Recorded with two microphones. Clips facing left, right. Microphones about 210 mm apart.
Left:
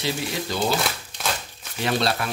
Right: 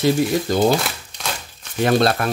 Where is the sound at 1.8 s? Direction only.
50° right (ahead or behind).